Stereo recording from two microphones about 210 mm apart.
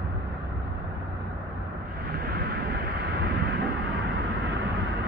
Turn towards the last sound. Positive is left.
turn(degrees=-50)  # may be behind; listen again after turning